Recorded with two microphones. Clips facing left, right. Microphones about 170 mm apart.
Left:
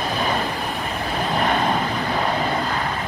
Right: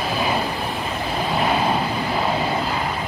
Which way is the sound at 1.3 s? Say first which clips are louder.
Even; 5° right (ahead or behind).